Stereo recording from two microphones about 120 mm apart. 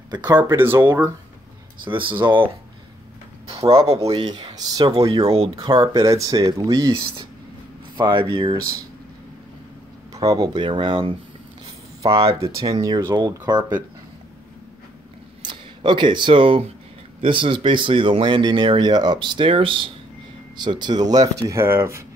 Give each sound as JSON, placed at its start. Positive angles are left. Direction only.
{"t": 0.1, "sound": "speech", "side_deg": -30}
{"t": 0.6, "sound": "speech", "side_deg": -20}
{"t": 1.9, "sound": "speech", "side_deg": -45}
{"t": 4.1, "sound": "speech", "side_deg": -40}
{"t": 5.2, "sound": "speech", "side_deg": -55}
{"t": 5.6, "sound": "speech", "side_deg": -35}
{"t": 10.1, "sound": "speech", "side_deg": -30}
{"t": 12.4, "sound": "speech", "side_deg": -30}
{"t": 15.4, "sound": "speech", "side_deg": -40}